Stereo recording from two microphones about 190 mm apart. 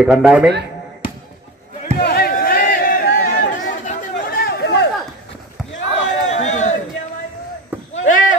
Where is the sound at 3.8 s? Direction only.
45° left (ahead or behind).